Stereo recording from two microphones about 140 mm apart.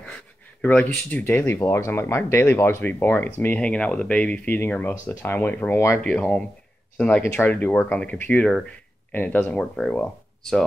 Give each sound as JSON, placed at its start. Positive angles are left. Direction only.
{"t": 0.6, "sound": "speech", "side_deg": 10}